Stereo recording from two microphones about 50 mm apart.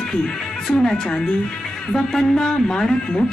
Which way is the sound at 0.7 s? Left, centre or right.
Centre.